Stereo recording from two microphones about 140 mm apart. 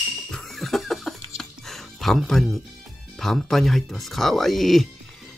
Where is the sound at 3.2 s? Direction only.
Centre (ahead or behind).